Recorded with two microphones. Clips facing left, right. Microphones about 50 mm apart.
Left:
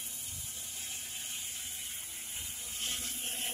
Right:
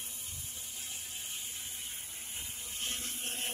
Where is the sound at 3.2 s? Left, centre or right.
Right.